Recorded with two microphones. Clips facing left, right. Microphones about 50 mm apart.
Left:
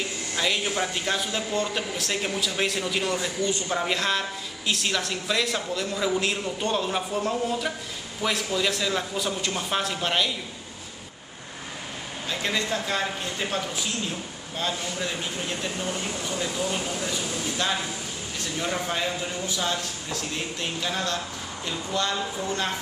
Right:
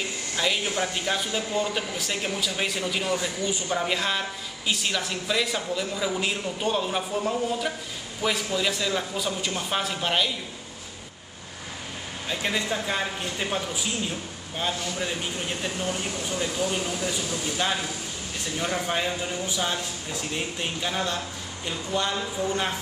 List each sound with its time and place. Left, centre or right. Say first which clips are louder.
0.4 s speech: even; centre
12.3 s a man's voice: even; centre
15.8 s a man's voice: right 1 dB; centre
17.6 s a man's voice: even; centre
18.9 s a man's voice: right 1 dB; centre
22.1 s speech: right 1 dB; centre